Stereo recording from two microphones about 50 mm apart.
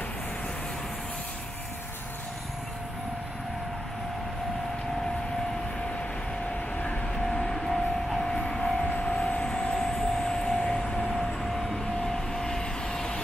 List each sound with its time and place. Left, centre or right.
7.2 s train: centre
8.8 s vehicle: left
9.8 s vehicle: centre
11.1 s vehicle: centre
11.8 s vehicle: centre